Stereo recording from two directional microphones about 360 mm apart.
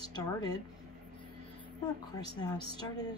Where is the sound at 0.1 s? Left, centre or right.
Centre.